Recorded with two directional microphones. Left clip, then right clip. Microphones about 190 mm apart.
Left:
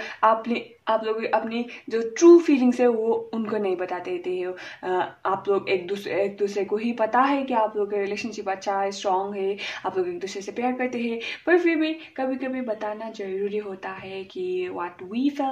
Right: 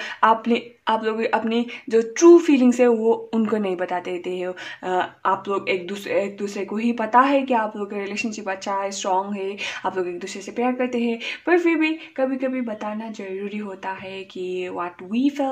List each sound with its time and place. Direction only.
0.2 s speech: 30° right (ahead or behind)
14.5 s speech: 30° right (ahead or behind)